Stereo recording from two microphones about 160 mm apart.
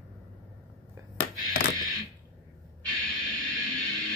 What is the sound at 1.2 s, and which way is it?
Music, 85° left.